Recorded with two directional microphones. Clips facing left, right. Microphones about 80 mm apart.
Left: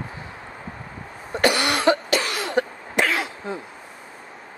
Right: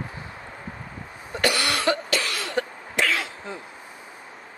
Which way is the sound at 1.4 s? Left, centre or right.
Left.